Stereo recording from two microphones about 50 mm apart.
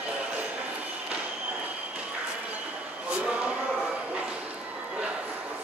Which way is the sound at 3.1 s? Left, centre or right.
Right.